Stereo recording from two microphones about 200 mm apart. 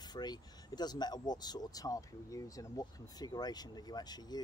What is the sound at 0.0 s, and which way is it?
Speech, 20° left (ahead or behind).